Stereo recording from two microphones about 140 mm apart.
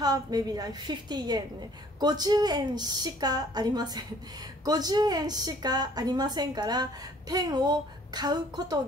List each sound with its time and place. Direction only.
0.0 s a woman's voice: 25° right (ahead or behind)